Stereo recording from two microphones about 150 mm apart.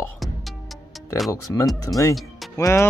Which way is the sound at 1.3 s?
20° left (ahead or behind).